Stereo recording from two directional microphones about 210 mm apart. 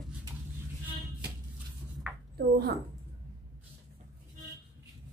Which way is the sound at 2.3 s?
45° right (ahead or behind).